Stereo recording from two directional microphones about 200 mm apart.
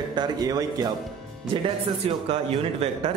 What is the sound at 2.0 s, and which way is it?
Speech, 30° right (ahead or behind).